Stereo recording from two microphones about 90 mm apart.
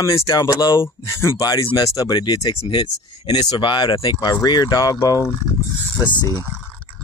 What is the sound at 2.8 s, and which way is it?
Speech, 50° left (ahead or behind).